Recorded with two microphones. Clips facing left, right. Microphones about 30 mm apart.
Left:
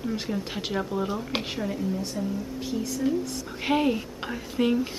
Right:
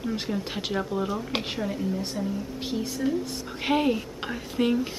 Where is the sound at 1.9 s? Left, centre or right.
Right.